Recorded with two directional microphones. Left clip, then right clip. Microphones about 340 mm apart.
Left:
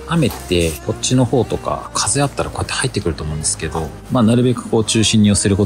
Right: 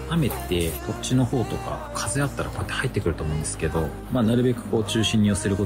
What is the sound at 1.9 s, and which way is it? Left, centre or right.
Speech, centre.